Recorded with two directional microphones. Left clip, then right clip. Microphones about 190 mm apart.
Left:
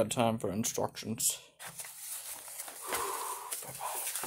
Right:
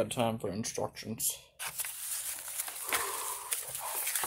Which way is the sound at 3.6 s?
20° left (ahead or behind).